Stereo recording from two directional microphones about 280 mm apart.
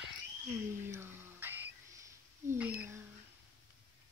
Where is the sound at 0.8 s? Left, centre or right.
Centre.